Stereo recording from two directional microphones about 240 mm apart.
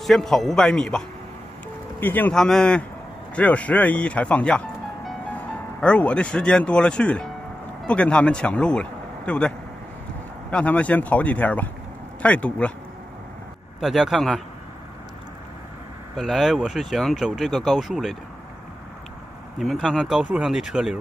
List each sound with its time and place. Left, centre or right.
0.0 s speech: centre
10.5 s speech: centre
13.7 s speech: centre
16.2 s speech: centre
19.6 s speech: centre